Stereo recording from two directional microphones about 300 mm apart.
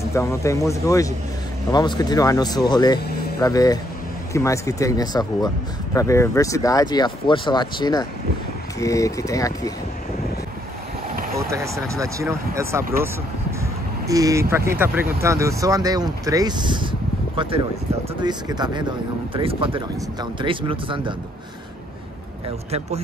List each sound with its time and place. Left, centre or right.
0.1 s speech: centre
11.5 s speech: centre
14.0 s speech: centre
22.7 s speech: right